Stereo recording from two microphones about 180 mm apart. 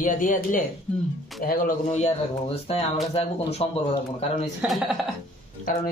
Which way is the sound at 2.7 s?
30° left (ahead or behind).